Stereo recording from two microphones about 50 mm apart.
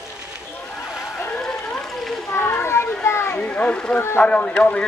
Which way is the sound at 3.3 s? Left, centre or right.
Left.